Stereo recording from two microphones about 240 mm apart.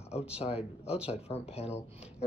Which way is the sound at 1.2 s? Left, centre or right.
Left.